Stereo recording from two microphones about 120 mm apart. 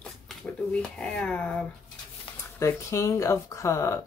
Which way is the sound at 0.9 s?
10° left (ahead or behind).